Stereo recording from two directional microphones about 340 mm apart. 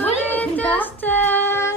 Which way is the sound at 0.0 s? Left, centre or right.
Centre.